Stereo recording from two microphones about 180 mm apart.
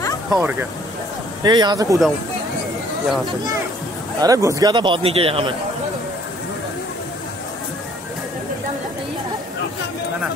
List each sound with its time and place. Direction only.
0.3 s speech: 10° right (ahead or behind)
1.4 s a man's voice: 25° right (ahead or behind)
4.2 s a man's voice: 20° right (ahead or behind)